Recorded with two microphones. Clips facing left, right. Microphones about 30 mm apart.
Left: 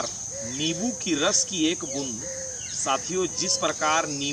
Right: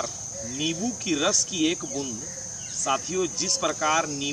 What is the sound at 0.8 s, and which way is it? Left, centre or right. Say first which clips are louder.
Speech: even; centre.